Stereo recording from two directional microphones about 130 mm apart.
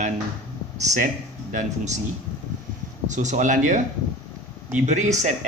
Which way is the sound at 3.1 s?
65° right (ahead or behind).